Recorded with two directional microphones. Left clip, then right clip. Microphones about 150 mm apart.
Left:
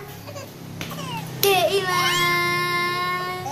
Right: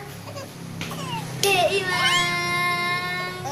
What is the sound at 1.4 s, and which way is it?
Children playing, 85° left.